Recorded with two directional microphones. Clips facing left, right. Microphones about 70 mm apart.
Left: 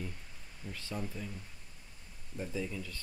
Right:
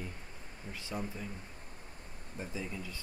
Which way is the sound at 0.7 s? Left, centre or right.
Centre.